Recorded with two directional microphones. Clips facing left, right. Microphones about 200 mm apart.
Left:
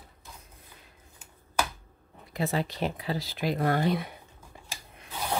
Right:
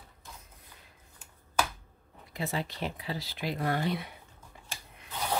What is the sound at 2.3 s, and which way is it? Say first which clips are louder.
Speech: left 5 dB; 45° left (ahead or behind).